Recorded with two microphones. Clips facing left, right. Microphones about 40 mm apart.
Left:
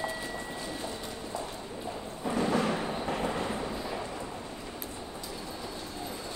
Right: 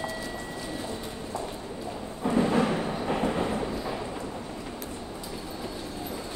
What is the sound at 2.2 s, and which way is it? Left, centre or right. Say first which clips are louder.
Timpani: right 4 dB; right.